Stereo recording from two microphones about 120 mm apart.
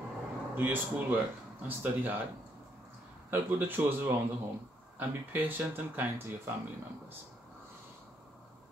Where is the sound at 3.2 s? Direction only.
15° right (ahead or behind).